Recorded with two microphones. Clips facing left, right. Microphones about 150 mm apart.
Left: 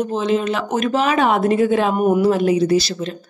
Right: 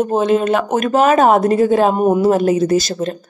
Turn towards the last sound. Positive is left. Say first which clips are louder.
# right 2 dB
turn(degrees=-45)  # may be behind; listen again after turning